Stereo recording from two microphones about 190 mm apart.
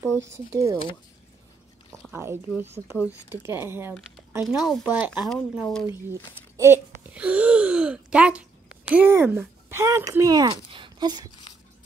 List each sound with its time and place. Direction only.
0.3 s speech: 15° right (ahead or behind)
2.1 s speech: 10° right (ahead or behind)
4.5 s speech: centre (ahead or behind)
5.3 s speech: 5° left (ahead or behind)
5.9 s speech: 15° right (ahead or behind)
11.5 s dog: 25° left (ahead or behind)